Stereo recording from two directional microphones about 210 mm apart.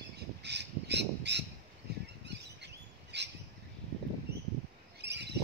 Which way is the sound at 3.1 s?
55° right (ahead or behind).